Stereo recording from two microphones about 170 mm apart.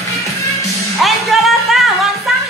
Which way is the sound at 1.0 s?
Centre (ahead or behind).